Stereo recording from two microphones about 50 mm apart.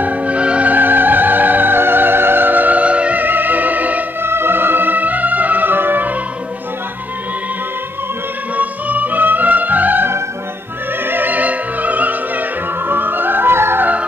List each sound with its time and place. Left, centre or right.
0.0 s music: right
0.7 s music: right
3.3 s music: right
4.2 s music: right
8.5 s music: right
11.1 s opera: right